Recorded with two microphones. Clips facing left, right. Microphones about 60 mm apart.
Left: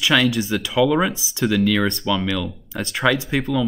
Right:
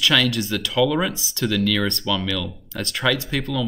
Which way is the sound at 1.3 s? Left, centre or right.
Centre.